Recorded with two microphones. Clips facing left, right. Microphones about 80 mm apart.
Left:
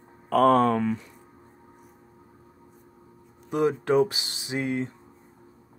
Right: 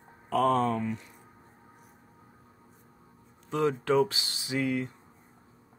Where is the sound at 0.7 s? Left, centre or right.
Left.